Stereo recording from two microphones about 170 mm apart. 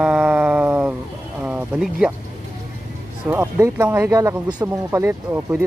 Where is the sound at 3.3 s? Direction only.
15° right (ahead or behind).